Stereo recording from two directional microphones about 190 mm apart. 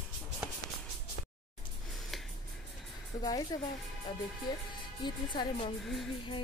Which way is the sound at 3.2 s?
20° left (ahead or behind).